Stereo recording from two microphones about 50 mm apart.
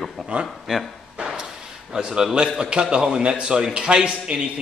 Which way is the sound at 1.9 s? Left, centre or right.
Centre.